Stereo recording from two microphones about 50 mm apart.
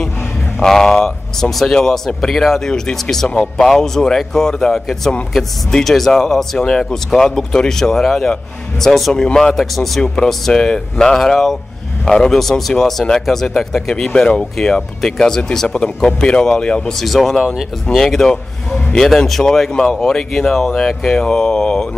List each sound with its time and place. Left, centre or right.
0.6 s speech: centre
17.0 s speech: centre
17.9 s speech: centre